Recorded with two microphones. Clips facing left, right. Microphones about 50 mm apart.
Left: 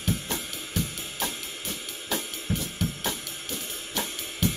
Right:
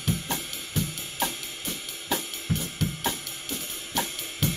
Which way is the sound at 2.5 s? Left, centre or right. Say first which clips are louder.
Right 1 dB; centre.